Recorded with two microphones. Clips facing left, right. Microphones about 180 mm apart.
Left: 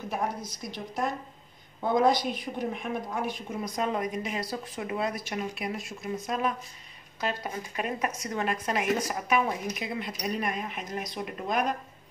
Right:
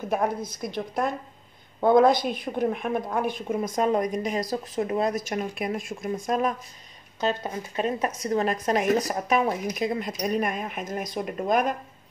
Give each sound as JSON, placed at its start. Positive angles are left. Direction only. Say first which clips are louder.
{"t": 0.1, "sound": "a woman's voice", "louder": "right 7 dB", "side_deg": -55}
{"t": 7.2, "sound": "a woman's voice", "louder": "right 5 dB", "side_deg": -30}